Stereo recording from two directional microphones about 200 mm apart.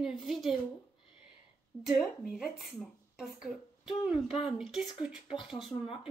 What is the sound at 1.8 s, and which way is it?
A child's voice, centre (ahead or behind).